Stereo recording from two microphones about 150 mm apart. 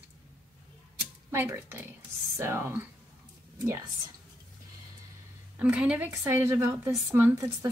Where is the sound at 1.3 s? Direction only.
15° right (ahead or behind).